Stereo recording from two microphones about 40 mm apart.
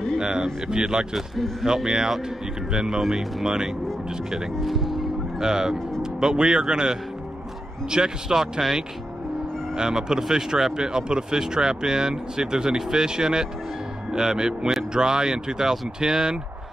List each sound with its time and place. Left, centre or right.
0.2 s speech: centre
1.1 s speech: centre
1.7 s speech: centre
5.4 s speech: centre